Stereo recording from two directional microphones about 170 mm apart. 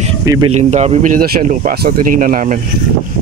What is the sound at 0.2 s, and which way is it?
Speech, 20° right (ahead or behind).